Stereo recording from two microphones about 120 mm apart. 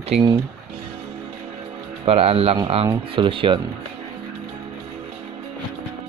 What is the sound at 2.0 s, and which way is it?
Speech, 55° right (ahead or behind).